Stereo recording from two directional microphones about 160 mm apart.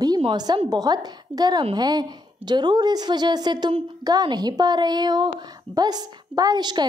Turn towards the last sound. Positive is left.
turn(degrees=-25)  # may be behind; listen again after turning